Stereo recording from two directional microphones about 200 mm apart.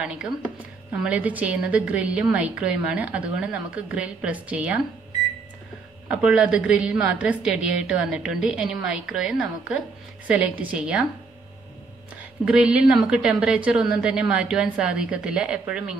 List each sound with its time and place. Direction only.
0.0 s a woman's voice: 5° right (ahead or behind)
6.0 s a woman's voice: 5° right (ahead or behind)
12.4 s a woman's voice: 5° right (ahead or behind)